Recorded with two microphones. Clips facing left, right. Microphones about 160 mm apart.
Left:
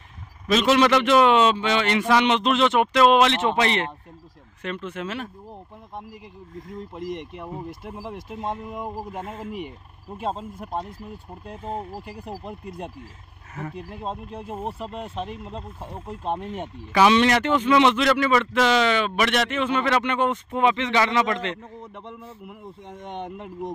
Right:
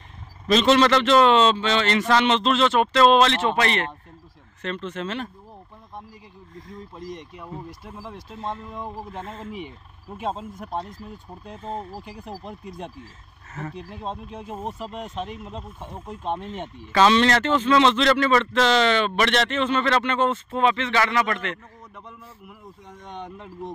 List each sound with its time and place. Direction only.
0.5 s a man's voice: 5° left (ahead or behind)
7.0 s a man's voice: 20° left (ahead or behind); by 12.5 s 5° left (ahead or behind)
13.7 s speech: 5° left (ahead or behind)
14.7 s speech: 30° left (ahead or behind)
15.0 s a man's voice: 5° left (ahead or behind)